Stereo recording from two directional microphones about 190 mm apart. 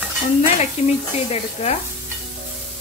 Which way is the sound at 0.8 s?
35° left (ahead or behind).